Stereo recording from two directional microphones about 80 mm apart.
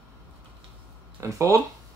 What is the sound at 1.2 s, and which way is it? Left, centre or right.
Speech, right.